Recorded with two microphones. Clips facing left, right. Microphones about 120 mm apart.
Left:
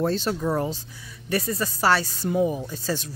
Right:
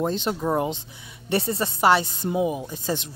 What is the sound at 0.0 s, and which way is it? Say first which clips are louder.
Speech: left 1 dB; 20° right (ahead or behind).